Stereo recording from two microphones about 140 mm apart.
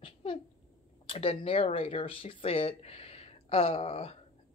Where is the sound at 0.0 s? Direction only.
35° left (ahead or behind).